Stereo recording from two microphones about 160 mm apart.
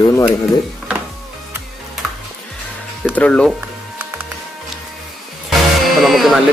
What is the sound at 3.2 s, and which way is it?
Speech, 5° left (ahead or behind).